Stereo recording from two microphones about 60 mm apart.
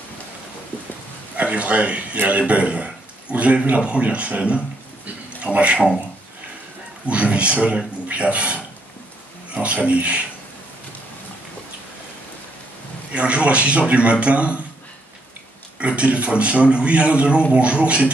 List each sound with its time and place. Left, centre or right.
1.3 s a man's voice: right
5.0 s a sound: right
7.1 s a man's voice: right
13.1 s a man's voice: right
15.8 s a man's voice: right